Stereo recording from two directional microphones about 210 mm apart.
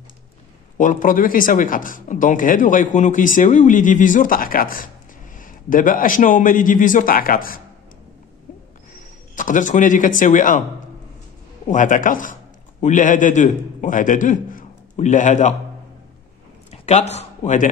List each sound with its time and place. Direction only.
0.7 s speech: 40° left (ahead or behind)
9.3 s speech: 40° left (ahead or behind)
11.6 s a man's voice: 35° left (ahead or behind)
16.7 s speech: 30° left (ahead or behind)